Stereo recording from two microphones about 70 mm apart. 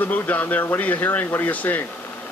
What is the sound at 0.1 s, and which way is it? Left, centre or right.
A woman's voice, left.